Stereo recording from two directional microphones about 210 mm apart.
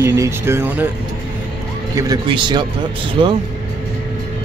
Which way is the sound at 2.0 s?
20° right (ahead or behind).